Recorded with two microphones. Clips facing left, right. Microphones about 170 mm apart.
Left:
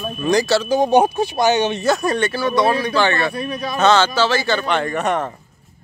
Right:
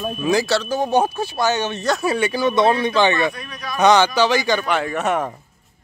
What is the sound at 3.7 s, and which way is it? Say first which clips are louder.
Speech: right 1 dB; 15° right (ahead or behind).